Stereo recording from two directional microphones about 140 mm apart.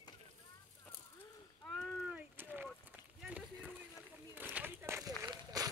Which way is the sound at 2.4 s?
15° right (ahead or behind).